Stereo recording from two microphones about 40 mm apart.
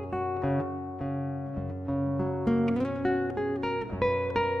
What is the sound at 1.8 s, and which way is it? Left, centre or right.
Music, centre.